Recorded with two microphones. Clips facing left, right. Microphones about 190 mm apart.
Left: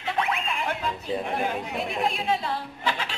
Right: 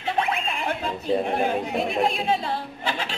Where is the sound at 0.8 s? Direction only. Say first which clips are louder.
Right 5 dB; 30° right (ahead or behind).